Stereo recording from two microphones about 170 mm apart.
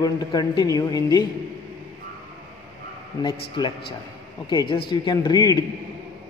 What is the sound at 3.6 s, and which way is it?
A woman's voice, 25° left (ahead or behind).